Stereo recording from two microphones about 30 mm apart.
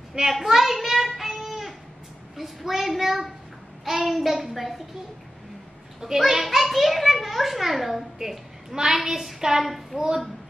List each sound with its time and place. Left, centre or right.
0.3 s a sound: centre
2.3 s child singing: centre
3.8 s a woman's voice: centre
5.9 s a child's voice: centre
8.2 s a woman's voice: centre
9.9 s a woman's voice: right